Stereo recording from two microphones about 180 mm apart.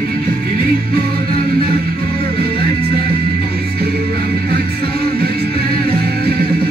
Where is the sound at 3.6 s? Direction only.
60° right (ahead or behind).